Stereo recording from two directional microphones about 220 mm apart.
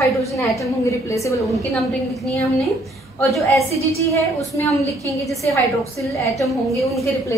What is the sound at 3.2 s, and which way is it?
Speech, 10° left (ahead or behind).